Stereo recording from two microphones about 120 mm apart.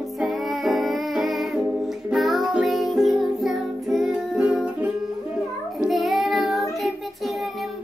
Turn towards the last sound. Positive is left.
turn(degrees=0)  # may be behind; listen again after turning